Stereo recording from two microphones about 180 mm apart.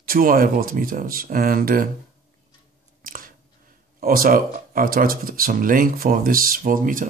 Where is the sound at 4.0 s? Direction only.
55° right (ahead or behind).